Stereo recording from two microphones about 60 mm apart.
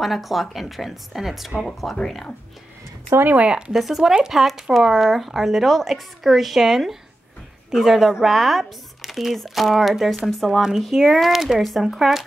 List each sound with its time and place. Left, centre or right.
0.0 s speech: centre
3.3 s speech: centre
3.7 s speech: centre